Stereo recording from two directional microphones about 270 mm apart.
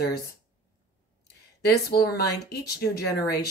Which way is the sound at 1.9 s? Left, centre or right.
Left.